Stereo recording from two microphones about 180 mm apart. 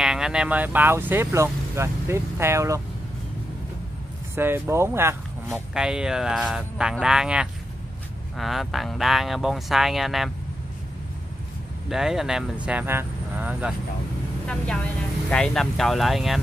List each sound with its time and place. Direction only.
0.0 s speech: 5° right (ahead or behind)
4.4 s speech: 15° right (ahead or behind)
5.5 s speech: 5° right (ahead or behind)
11.9 s speech: centre (ahead or behind)
14.5 s speech: 5° left (ahead or behind)